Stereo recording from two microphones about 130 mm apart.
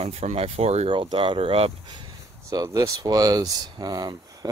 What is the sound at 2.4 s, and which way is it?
Speech, 25° right (ahead or behind).